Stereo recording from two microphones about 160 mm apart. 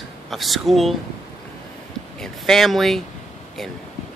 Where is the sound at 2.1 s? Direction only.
5° left (ahead or behind).